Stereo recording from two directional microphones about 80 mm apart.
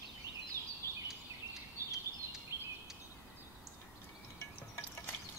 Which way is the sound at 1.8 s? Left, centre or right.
Right.